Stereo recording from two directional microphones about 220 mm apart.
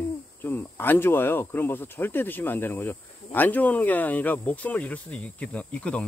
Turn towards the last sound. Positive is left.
turn(degrees=5)  # may be behind; listen again after turning